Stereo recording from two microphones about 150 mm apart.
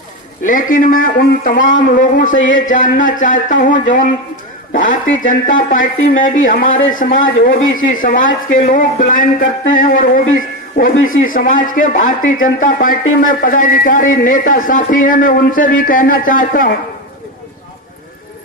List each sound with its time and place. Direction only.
0.5 s speech: 65° left (ahead or behind)